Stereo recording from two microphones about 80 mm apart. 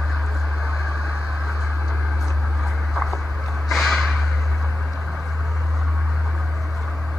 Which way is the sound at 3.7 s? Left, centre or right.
Centre.